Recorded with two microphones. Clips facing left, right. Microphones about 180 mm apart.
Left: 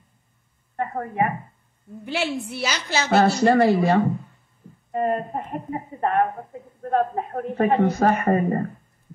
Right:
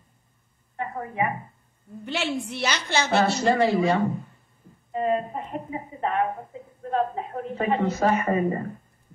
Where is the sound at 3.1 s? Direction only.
55° left (ahead or behind).